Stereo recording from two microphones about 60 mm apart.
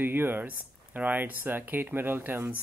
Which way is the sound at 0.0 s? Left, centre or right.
Right.